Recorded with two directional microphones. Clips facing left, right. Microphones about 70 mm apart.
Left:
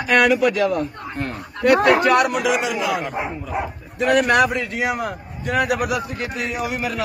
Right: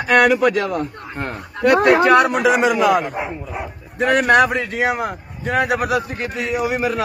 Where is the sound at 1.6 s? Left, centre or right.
Right.